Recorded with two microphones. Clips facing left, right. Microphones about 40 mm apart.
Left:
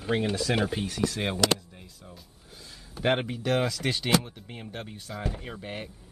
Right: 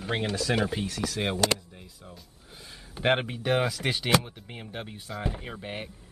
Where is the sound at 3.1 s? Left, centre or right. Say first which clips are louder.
Even; centre.